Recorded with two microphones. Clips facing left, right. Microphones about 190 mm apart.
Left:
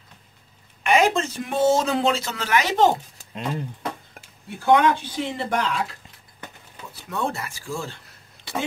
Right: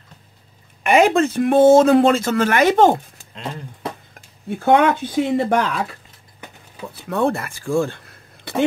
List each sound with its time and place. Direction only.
0.8 s speech: 55° right (ahead or behind)
4.6 s speech: 60° right (ahead or behind)